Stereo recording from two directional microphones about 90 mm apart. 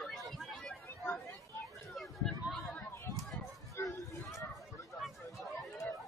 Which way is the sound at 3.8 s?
40° left (ahead or behind).